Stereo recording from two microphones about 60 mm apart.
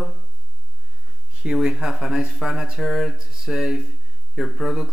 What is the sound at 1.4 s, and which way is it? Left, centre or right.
Speech, centre.